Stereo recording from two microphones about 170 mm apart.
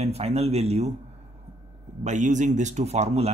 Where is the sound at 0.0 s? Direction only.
40° right (ahead or behind).